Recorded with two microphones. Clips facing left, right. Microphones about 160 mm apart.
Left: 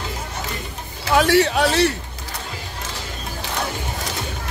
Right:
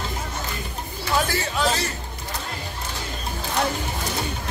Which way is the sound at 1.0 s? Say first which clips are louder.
Left 9 dB; 80° left.